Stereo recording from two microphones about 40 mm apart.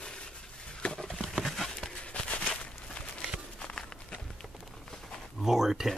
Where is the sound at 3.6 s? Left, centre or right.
Left.